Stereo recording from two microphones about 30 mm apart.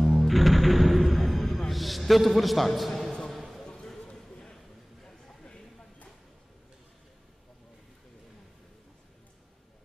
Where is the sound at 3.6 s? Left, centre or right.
Left.